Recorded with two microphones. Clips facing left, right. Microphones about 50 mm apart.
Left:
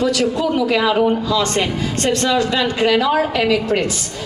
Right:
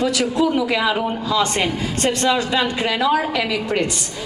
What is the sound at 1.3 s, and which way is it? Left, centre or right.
A man's voice, centre.